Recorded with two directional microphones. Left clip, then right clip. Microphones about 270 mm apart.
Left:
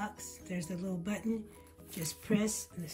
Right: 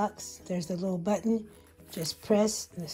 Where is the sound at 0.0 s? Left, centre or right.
Centre.